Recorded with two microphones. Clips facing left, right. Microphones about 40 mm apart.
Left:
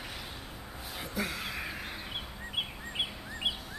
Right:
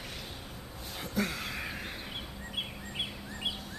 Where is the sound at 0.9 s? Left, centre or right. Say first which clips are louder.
Right 2 dB; centre.